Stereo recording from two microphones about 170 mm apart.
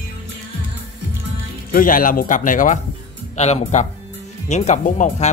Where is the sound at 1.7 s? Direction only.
55° left (ahead or behind).